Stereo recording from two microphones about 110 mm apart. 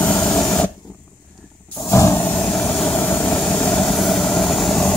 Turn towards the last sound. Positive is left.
turn(degrees=5)  # may be behind; listen again after turning